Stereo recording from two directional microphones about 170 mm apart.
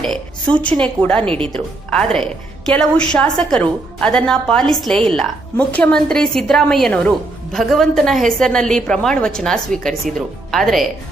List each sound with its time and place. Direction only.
0.6 s a woman's voice: 5° left (ahead or behind)
1.2 s speech: 30° right (ahead or behind)
1.5 s a woman's voice: 5° left (ahead or behind)